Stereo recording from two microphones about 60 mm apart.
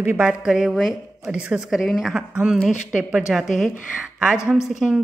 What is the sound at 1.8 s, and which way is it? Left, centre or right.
Speech, centre.